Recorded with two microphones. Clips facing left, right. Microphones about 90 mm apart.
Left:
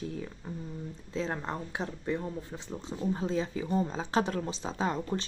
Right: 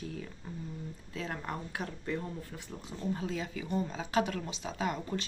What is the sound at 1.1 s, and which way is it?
Speech, 25° left (ahead or behind).